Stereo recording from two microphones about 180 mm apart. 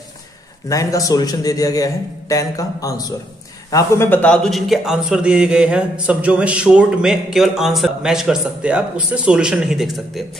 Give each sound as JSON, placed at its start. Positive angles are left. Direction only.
{"t": 0.7, "sound": "a man's voice", "side_deg": 20}